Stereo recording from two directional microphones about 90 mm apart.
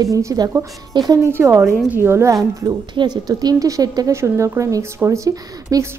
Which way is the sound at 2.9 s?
50° right (ahead or behind).